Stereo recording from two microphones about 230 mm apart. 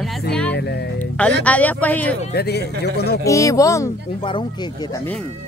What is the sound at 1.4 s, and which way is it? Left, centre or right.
Speech, centre.